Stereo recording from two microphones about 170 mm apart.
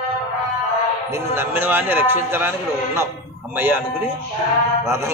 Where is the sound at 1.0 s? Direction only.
15° right (ahead or behind).